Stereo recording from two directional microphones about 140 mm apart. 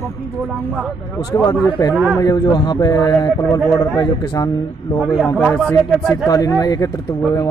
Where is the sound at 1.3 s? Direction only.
25° left (ahead or behind).